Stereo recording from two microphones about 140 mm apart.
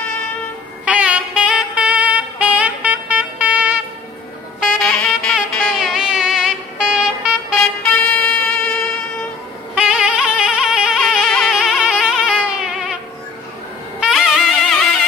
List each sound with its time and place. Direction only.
0.8 s music: 10° right (ahead or behind)
4.8 s music: 5° left (ahead or behind)
8.0 s music: 10° left (ahead or behind)
9.8 s music: 10° right (ahead or behind)
11.1 s music: 5° left (ahead or behind)
13.9 s wind instrument: 5° right (ahead or behind)
14.4 s music: 5° left (ahead or behind)